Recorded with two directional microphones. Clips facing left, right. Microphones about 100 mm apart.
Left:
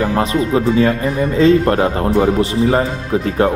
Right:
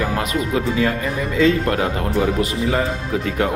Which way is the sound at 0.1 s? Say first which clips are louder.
Left 5 dB; 30° left (ahead or behind).